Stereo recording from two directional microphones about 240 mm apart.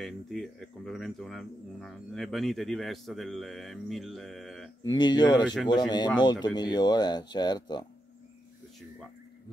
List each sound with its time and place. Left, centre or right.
0.0 s speech: centre
4.8 s speech: centre